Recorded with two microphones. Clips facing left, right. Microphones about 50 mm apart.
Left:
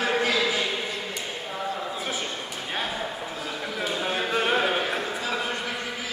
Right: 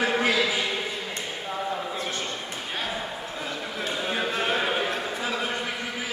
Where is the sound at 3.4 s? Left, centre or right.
Centre.